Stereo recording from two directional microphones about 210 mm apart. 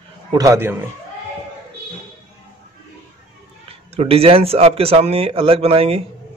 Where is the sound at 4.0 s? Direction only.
25° right (ahead or behind).